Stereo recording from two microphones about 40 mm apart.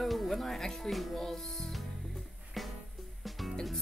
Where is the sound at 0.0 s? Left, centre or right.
Centre.